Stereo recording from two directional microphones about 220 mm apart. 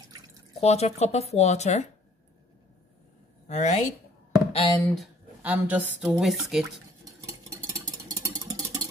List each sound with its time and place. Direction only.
0.6 s speech: 30° left (ahead or behind)
3.4 s speech: 30° left (ahead or behind)
4.9 s a woman's voice: 5° right (ahead or behind)
7.1 s a sound: 15° right (ahead or behind)